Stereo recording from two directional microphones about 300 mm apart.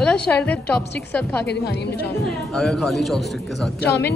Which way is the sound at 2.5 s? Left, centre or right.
Centre.